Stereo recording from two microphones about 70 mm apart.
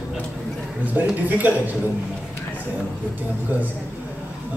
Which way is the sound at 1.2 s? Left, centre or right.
Right.